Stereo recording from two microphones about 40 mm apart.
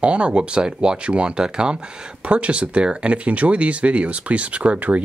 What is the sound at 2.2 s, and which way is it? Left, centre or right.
Speech, right.